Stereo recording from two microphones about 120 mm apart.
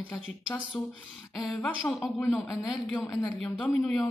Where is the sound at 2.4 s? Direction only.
15° left (ahead or behind).